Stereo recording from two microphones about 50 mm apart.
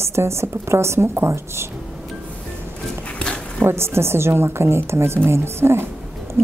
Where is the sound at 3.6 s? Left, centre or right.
Right.